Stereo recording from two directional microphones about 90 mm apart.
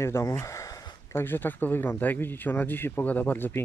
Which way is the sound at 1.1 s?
25° left (ahead or behind).